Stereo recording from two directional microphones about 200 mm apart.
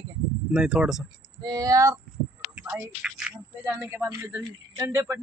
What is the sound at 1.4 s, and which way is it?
Speech, 20° right (ahead or behind).